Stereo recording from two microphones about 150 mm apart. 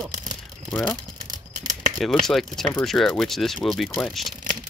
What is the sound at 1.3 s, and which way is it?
Scissors, 60° right (ahead or behind).